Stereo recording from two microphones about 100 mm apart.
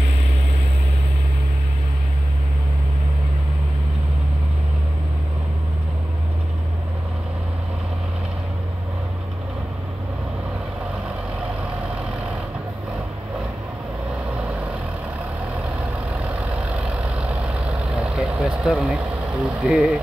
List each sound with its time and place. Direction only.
14.3 s vehicle: 15° right (ahead or behind)